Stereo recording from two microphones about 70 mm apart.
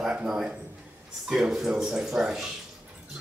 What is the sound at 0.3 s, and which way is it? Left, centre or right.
Speech, centre.